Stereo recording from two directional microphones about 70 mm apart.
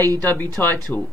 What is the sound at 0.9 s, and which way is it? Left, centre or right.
Speech, centre.